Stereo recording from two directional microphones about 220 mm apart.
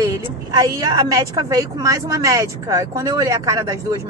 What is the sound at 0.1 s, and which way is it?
A woman's voice, 15° right (ahead or behind).